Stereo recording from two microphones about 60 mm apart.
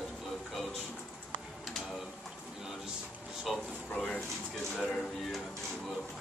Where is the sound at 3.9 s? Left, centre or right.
Centre.